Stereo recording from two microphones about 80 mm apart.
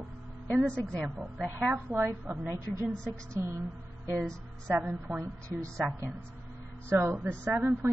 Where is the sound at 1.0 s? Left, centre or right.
Centre.